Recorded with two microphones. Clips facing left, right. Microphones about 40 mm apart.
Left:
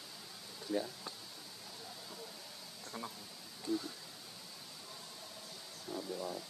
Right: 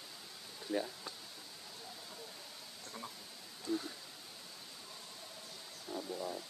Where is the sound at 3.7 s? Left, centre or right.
Centre.